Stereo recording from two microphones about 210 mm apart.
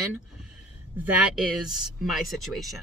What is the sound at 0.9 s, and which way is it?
Speech, 5° right (ahead or behind).